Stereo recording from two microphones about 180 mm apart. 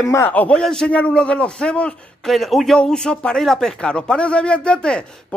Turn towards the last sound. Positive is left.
turn(degrees=5)  # may be behind; listen again after turning